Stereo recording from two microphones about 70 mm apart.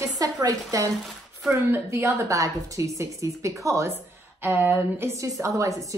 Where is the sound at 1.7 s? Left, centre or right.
Right.